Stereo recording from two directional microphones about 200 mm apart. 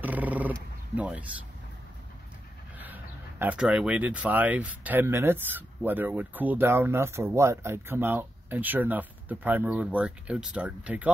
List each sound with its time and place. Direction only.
0.0 s roaring cats: 10° right (ahead or behind)
0.9 s speech: 5° right (ahead or behind)
2.8 s speech: 10° right (ahead or behind)